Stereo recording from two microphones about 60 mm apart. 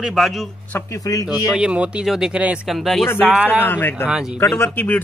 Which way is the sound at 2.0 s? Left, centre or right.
Centre.